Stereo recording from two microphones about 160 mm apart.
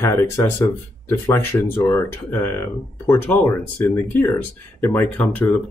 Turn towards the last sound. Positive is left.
turn(degrees=10)  # may be behind; listen again after turning